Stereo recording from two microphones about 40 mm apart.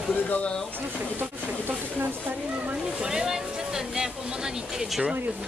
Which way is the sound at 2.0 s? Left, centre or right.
Right.